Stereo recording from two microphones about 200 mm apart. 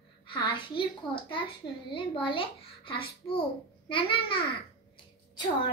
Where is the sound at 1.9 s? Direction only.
25° left (ahead or behind).